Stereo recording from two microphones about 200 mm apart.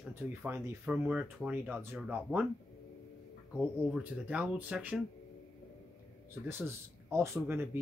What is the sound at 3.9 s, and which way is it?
Speech, 5° right (ahead or behind).